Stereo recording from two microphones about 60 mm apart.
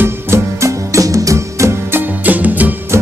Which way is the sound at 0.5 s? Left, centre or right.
Right.